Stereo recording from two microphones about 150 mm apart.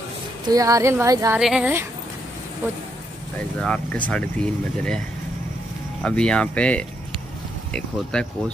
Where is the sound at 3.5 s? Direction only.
5° left (ahead or behind).